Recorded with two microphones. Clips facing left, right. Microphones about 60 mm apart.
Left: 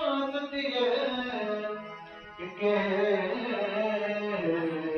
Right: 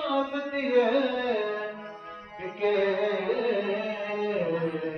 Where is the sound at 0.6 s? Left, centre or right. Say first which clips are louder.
Right 6 dB; right.